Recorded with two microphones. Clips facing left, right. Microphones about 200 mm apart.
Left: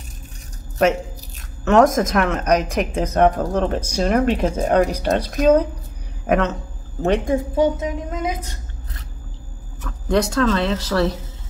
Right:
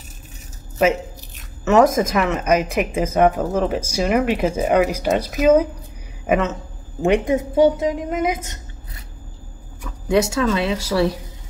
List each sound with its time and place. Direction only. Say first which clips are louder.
0.8 s a man's voice: even; 5° right (ahead or behind)
7.3 s a woman's voice: right 3 dB; 25° right (ahead or behind)
9.8 s speech: right 1 dB; 5° right (ahead or behind)